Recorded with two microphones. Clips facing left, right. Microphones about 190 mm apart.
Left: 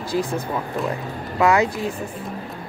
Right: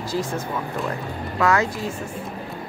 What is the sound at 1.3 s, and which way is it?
Speech, 15° left (ahead or behind).